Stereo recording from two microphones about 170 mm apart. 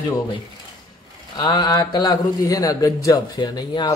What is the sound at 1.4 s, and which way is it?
Speech, 25° left (ahead or behind).